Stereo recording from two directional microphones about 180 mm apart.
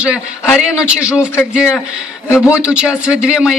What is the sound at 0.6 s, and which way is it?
Speech, 5° right (ahead or behind).